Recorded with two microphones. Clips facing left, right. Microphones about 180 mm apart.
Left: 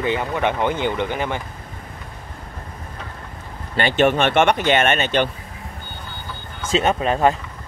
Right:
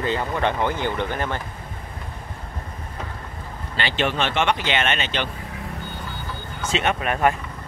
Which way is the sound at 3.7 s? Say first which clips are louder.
Left 7 dB; 50° left (ahead or behind).